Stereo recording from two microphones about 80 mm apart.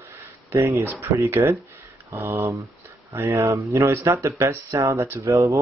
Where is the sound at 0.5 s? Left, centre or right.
Right.